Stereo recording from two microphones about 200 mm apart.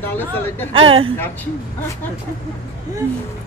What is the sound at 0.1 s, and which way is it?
Speech, 10° left (ahead or behind).